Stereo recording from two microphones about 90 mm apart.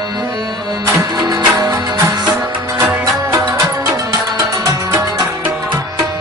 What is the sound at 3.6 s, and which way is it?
Music, 40° right (ahead or behind).